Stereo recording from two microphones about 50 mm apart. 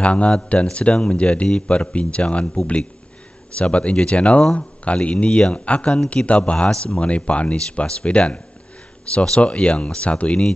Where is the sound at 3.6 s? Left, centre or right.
Left.